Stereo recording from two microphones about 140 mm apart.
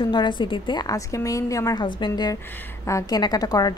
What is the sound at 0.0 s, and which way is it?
A woman's voice, 30° left (ahead or behind).